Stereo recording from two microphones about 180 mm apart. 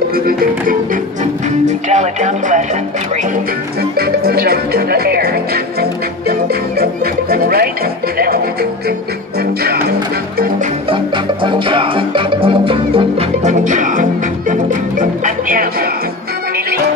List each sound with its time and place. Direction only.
0.1 s music: 55° right (ahead or behind)
1.7 s speech: 40° right (ahead or behind)
4.0 s music: 60° right (ahead or behind)
11.4 s music: 30° right (ahead or behind); by 15.9 s 50° right (ahead or behind)